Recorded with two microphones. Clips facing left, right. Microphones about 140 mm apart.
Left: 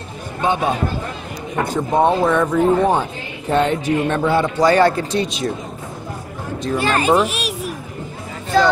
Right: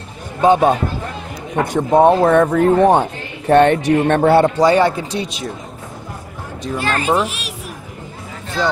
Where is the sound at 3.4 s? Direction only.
75° right (ahead or behind).